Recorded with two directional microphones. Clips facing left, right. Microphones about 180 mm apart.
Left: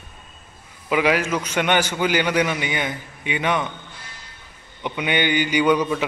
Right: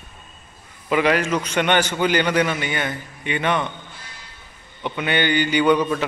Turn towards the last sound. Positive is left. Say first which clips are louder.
# right 1 dB
turn(degrees=10)  # may be behind; listen again after turning